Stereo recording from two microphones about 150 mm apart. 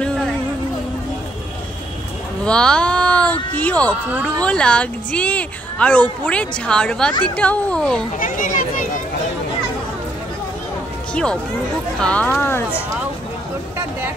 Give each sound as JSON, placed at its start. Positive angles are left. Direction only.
{"t": 2.4, "sound": "a woman's voice", "side_deg": 5}
{"t": 8.2, "sound": "speech", "side_deg": 60}
{"t": 12.0, "sound": "a woman's voice", "side_deg": 10}